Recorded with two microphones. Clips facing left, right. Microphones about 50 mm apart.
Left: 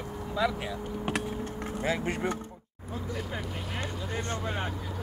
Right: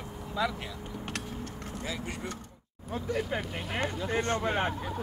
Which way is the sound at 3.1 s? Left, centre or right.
Right.